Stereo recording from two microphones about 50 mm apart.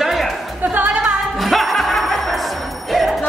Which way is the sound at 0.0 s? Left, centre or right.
Centre.